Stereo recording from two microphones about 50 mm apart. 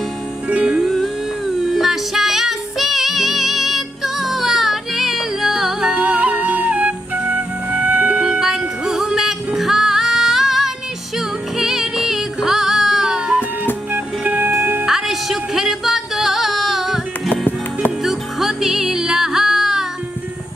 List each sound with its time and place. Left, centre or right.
0.5 s music: right
0.7 s music: centre
5.9 s music: right
8.2 s music: centre
13.9 s music: right
14.9 s music: centre
18.0 s music: centre